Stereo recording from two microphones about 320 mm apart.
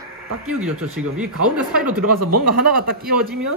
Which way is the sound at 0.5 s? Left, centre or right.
Centre.